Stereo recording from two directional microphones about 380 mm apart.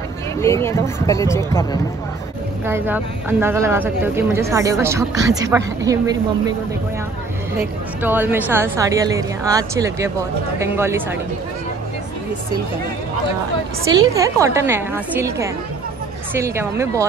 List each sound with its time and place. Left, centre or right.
0.4 s speech: centre
2.6 s speech: centre
7.5 s speech: centre
13.9 s speech: centre